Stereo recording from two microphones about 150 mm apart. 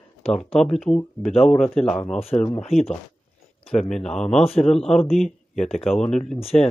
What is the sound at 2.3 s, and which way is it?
Speech, 25° left (ahead or behind).